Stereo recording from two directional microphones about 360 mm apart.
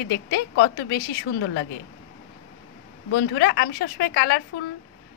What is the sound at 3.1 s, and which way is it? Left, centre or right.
Speech, left.